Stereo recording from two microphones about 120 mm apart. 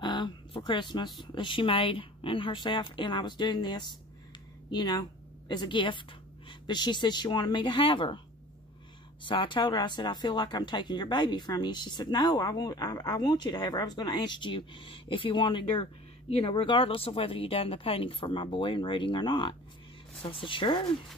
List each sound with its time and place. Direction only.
0.0 s a sound: 40° left (ahead or behind)
1.2 s speech: 45° left (ahead or behind)
9.2 s speech: 45° left (ahead or behind)